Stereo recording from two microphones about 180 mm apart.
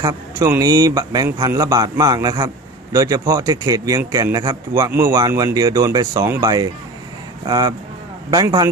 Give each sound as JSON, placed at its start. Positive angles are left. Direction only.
{"t": 0.0, "sound": "speech", "side_deg": -20}